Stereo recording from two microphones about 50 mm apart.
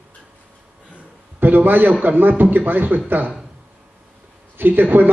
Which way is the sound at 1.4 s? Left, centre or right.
Right.